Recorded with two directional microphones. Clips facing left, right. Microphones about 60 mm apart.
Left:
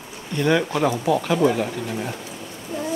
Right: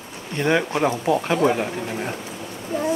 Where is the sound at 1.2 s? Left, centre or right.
Right.